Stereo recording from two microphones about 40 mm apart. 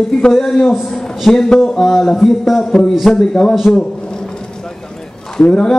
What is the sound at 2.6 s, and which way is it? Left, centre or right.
Speech, centre.